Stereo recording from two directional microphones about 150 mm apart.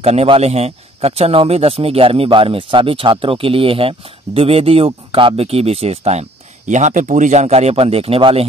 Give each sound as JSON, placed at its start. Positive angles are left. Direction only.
{"t": 0.0, "sound": "speech", "side_deg": -45}
{"t": 6.7, "sound": "a man's voice", "side_deg": -55}